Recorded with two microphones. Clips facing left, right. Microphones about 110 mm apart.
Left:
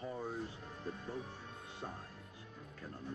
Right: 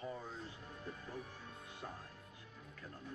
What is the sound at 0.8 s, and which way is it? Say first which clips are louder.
Speech: left 6 dB; 30° left (ahead or behind).